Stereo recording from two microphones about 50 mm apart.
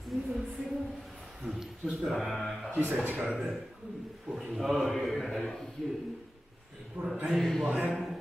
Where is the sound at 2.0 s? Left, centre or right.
Centre.